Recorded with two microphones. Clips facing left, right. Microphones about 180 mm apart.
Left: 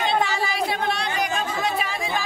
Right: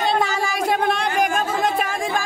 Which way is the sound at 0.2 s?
45° right (ahead or behind).